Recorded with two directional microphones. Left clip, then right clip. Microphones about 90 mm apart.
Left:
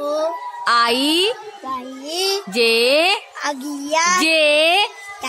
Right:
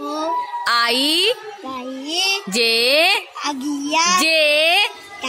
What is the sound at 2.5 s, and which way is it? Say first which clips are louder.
Music: left 2 dB; 15° right (ahead or behind).